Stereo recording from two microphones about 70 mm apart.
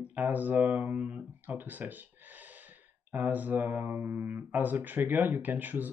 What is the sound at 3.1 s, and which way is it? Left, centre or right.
Speech, right.